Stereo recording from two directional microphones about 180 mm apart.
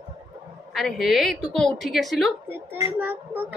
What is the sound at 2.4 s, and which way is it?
Speech, 10° right (ahead or behind).